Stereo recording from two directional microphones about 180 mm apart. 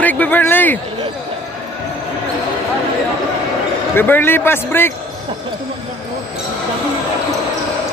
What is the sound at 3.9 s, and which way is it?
Speech, 10° left (ahead or behind).